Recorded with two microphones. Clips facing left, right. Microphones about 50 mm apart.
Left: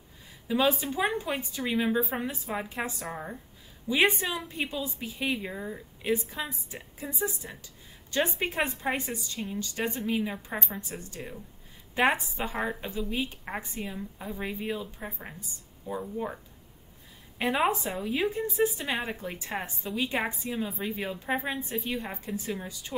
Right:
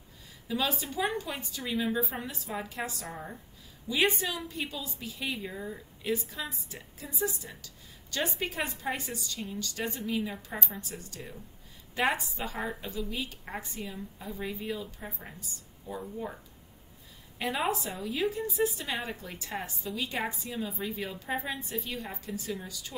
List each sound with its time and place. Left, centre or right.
0.5 s speech: left
17.4 s speech: left